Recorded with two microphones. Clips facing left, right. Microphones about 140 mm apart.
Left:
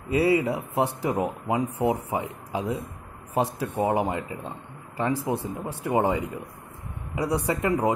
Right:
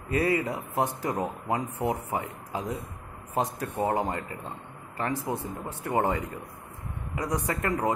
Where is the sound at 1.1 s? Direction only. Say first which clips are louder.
Left 3 dB; 10° left (ahead or behind); by 3.8 s 25° left (ahead or behind).